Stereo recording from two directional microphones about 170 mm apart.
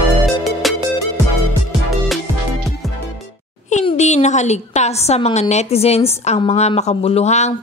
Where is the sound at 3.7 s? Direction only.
40° left (ahead or behind).